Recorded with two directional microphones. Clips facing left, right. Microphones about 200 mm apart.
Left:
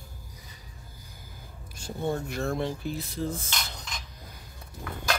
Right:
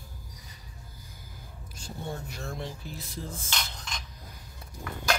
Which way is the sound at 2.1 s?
60° left (ahead or behind).